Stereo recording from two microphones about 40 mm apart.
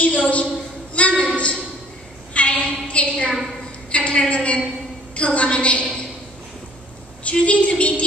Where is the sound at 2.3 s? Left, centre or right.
Left.